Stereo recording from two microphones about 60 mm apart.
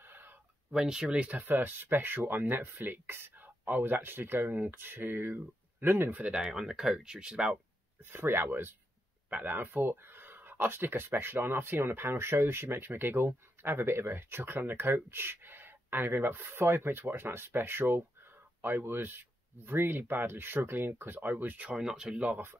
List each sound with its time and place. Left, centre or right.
0.0 s a sound: right
0.7 s speech: centre
1.1 s speech: right
1.4 s speech: right
6.1 s speech: centre
8.0 s speech: right
9.3 s speech: right
21.6 s speech: centre